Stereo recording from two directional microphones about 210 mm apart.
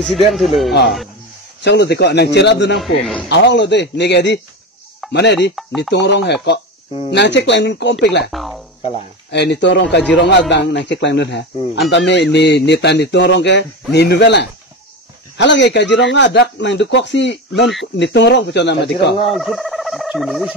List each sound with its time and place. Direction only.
0.3 s speech: centre (ahead or behind)
1.6 s speech: 50° left (ahead or behind)
2.8 s speech: centre (ahead or behind)
3.3 s speech: 55° left (ahead or behind)
8.3 s speech: centre (ahead or behind)
9.3 s speech: 55° left (ahead or behind)
19.2 s speech: centre (ahead or behind)